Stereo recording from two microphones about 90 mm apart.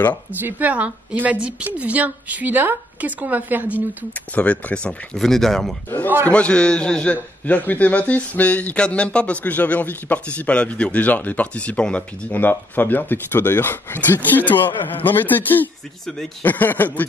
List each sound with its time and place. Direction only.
0.4 s a woman's voice: 20° right (ahead or behind)
4.4 s a man's voice: 15° left (ahead or behind)